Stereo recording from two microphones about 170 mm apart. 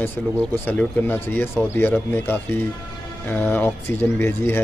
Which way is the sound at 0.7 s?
10° left (ahead or behind).